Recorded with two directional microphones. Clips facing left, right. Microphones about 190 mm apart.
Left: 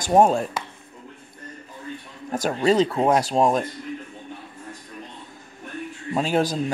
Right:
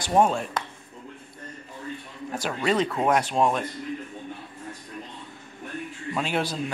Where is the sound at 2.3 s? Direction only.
40° left (ahead or behind).